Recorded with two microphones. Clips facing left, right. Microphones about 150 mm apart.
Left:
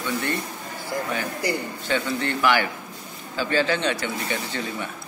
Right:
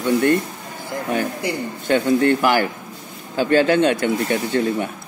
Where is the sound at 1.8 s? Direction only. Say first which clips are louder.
Right 11 dB; 50° right (ahead or behind).